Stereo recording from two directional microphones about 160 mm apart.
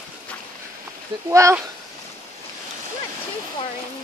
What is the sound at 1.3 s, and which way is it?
Speech, 20° right (ahead or behind).